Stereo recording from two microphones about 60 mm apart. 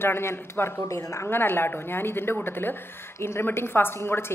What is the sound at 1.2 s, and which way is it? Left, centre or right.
A woman's voice, left.